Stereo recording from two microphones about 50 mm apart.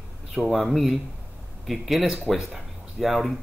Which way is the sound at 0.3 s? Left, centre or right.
Centre.